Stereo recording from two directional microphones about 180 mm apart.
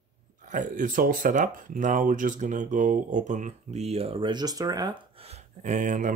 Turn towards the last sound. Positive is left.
turn(degrees=-45)  # may be behind; listen again after turning